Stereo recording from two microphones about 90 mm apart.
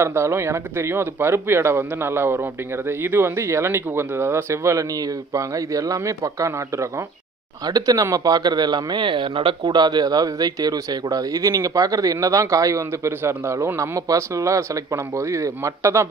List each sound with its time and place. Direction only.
0.0 s speech: 30° right (ahead or behind)